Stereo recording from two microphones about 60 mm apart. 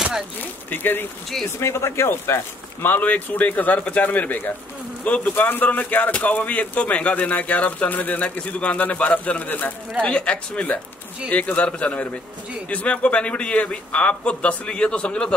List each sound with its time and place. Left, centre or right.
0.4 s speech: left
1.6 s speech: left
10.0 s speech: centre